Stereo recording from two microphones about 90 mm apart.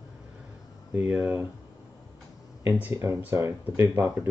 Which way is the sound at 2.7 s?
25° right (ahead or behind).